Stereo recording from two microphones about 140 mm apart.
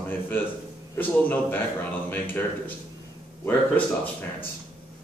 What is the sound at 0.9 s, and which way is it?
A man's voice, 15° left (ahead or behind).